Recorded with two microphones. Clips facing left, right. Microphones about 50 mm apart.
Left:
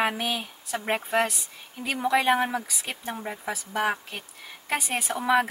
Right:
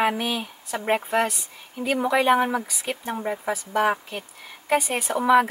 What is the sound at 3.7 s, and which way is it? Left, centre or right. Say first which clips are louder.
Speech: right 4 dB; centre.